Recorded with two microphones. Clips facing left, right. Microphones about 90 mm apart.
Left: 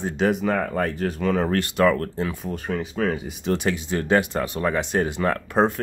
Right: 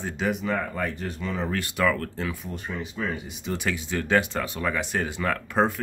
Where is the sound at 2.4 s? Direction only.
70° left (ahead or behind).